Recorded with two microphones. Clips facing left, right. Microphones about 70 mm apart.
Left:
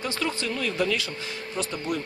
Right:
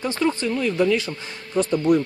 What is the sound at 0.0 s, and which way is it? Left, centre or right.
Speech, right.